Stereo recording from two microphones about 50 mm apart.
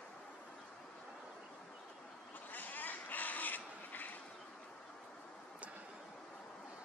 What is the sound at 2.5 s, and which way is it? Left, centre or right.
Crow, left.